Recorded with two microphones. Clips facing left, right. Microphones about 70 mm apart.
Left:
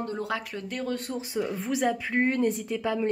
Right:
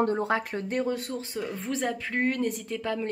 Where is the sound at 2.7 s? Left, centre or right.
Centre.